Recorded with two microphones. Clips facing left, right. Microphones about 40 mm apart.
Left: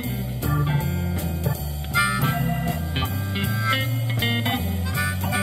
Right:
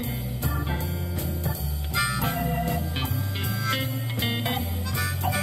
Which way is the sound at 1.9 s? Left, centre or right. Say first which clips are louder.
Left 5 dB; centre.